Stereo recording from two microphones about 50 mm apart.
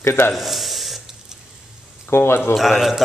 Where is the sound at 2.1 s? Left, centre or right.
Left.